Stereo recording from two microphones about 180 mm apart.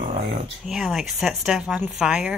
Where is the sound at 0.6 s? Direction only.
Centre (ahead or behind).